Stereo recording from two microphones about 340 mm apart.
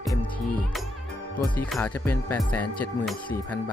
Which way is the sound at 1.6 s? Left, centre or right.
Centre.